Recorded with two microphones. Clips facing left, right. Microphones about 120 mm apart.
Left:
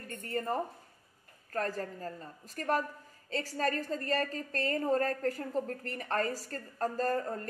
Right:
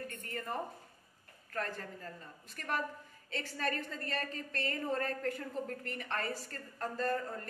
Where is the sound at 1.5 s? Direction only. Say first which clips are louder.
Left 5 dB; 35° left (ahead or behind).